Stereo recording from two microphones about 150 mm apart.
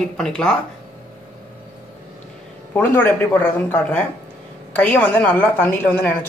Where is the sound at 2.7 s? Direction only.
10° left (ahead or behind).